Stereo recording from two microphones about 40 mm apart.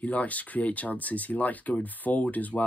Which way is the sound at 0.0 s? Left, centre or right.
Left.